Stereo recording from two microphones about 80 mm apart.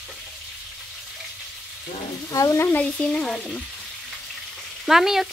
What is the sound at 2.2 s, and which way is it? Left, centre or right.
Frying, left.